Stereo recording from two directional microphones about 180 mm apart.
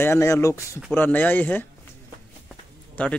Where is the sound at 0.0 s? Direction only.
15° left (ahead or behind).